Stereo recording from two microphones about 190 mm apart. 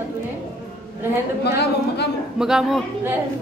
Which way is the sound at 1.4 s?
60° left (ahead or behind).